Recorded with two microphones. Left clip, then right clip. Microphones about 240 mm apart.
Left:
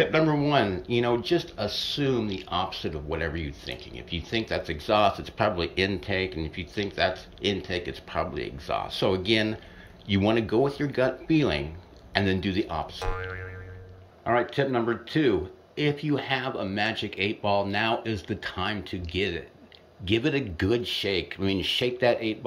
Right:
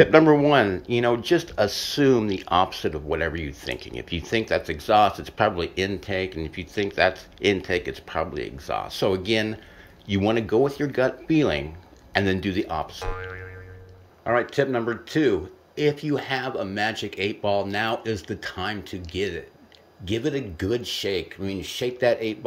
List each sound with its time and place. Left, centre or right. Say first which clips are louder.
0.0 s speech: right 8 dB; centre